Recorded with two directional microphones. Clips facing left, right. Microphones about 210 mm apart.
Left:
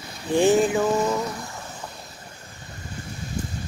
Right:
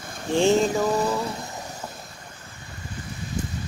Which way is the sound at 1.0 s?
35° right (ahead or behind).